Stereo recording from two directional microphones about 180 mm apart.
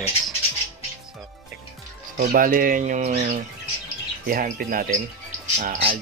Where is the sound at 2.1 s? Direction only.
50° right (ahead or behind).